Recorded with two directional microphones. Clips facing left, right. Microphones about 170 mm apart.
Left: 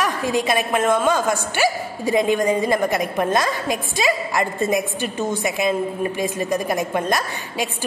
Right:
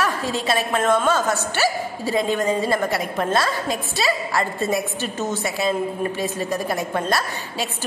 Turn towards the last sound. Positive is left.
turn(degrees=15)  # may be behind; listen again after turning